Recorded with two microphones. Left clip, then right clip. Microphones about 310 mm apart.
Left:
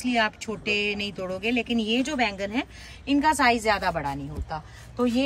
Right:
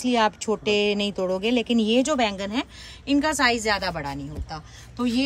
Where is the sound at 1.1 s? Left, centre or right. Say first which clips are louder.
Right 4 dB; centre.